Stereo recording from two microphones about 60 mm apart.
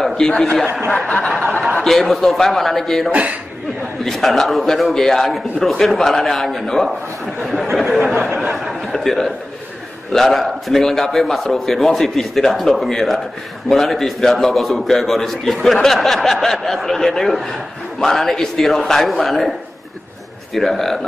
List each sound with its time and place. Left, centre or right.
0.0 s a man's voice: centre
1.8 s a man's voice: centre
3.1 s speech: right
4.0 s a man's voice: centre
8.4 s a sound: centre
8.8 s a man's voice: centre
20.5 s a man's voice: centre